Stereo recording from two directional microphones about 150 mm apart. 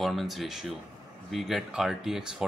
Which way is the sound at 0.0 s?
Centre (ahead or behind).